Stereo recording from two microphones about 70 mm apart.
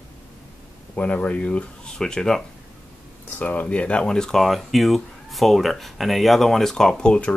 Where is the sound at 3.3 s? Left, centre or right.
Left.